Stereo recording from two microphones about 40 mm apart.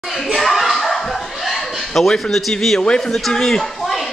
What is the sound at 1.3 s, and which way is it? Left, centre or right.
Chuckle, centre.